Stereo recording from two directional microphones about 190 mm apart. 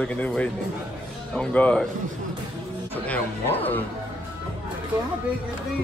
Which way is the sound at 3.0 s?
10° left (ahead or behind).